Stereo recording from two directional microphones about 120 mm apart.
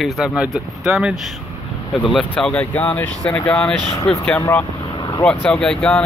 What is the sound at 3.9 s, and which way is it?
Speech, 55° left (ahead or behind).